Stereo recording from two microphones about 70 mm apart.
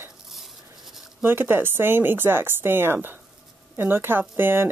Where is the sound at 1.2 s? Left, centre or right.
Right.